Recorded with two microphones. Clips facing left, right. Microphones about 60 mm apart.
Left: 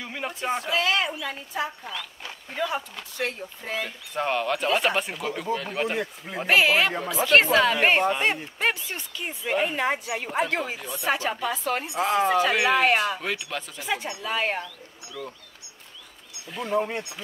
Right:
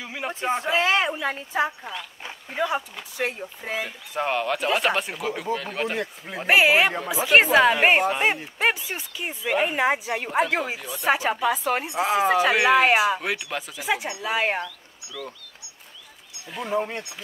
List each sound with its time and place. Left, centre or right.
0.0 s a sound: centre
0.3 s a woman's voice: right
1.9 s speech: centre
6.4 s speech: centre
11.1 s speech: centre
16.4 s speech: centre